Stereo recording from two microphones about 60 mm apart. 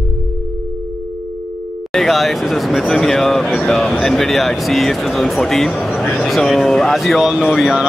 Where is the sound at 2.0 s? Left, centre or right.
Centre.